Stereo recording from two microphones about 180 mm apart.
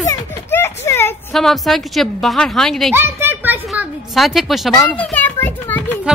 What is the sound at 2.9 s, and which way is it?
A child's voice, 15° right (ahead or behind).